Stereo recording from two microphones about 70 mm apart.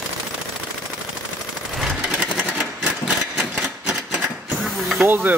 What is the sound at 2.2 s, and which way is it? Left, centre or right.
Sewing machine, centre.